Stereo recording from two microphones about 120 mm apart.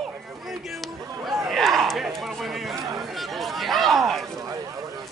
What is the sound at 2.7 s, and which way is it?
Speech, 25° right (ahead or behind).